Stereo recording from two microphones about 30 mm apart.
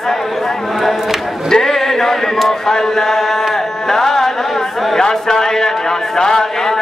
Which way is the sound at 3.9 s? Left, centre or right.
Centre.